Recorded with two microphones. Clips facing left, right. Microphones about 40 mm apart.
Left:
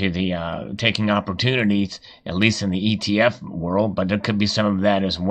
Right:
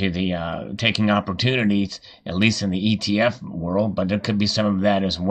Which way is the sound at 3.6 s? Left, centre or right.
Centre.